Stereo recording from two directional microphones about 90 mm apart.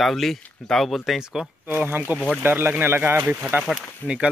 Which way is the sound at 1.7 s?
25° right (ahead or behind).